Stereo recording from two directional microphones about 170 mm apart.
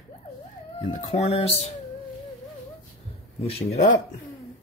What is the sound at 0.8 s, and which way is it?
Speech, 35° left (ahead or behind).